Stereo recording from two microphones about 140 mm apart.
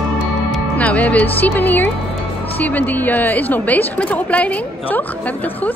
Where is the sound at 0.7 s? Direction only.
10° left (ahead or behind).